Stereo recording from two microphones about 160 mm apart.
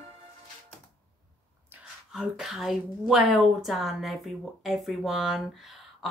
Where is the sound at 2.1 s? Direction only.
5° right (ahead or behind).